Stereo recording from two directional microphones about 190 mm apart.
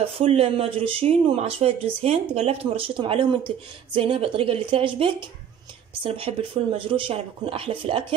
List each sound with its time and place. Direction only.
0.0 s speech: 30° right (ahead or behind)